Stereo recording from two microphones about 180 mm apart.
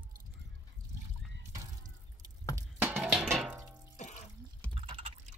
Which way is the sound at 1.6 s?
20° right (ahead or behind).